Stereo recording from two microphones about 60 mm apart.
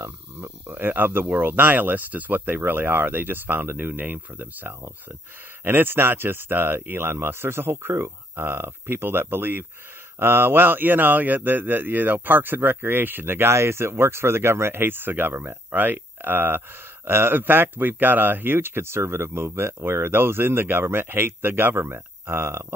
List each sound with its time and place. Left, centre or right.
0.4 s speech: right